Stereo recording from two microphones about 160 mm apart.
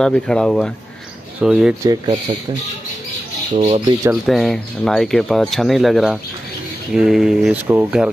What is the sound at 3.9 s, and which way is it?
Speech, 20° right (ahead or behind).